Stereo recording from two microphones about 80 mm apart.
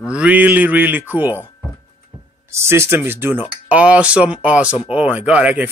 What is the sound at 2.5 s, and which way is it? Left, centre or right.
Speech, right.